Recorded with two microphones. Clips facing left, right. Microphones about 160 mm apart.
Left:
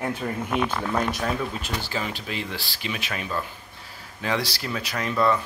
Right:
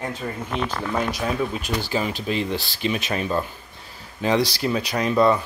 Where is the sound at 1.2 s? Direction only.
15° right (ahead or behind).